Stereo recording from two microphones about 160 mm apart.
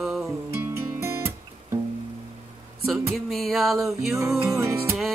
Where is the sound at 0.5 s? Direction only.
15° right (ahead or behind).